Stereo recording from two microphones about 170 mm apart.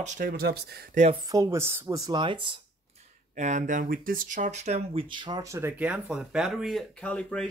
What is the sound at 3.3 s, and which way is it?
Speech, 45° right (ahead or behind).